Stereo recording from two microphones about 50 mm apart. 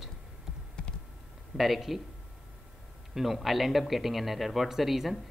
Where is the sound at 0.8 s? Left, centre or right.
Centre.